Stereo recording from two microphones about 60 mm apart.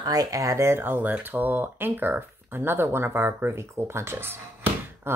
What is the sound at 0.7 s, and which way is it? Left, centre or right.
Speech, right.